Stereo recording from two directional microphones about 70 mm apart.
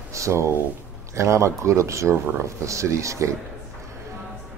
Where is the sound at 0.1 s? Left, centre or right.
Right.